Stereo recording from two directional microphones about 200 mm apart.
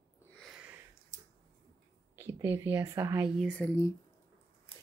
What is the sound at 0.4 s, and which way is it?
Sniff, 5° right (ahead or behind).